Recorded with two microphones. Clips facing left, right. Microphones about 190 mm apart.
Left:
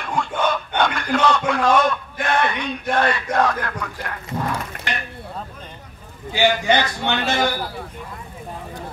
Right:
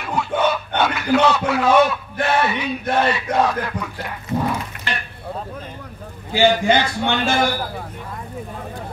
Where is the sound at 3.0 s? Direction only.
10° right (ahead or behind).